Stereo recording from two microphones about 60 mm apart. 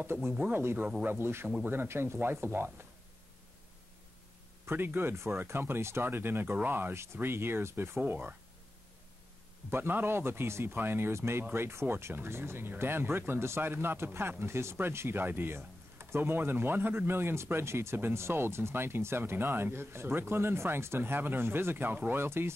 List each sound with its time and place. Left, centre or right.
0.0 s speech: right
0.3 s speech: right
0.6 s speech: right
4.6 s speech: right
6.0 s speech: right
8.0 s speech: right
9.7 s speech: right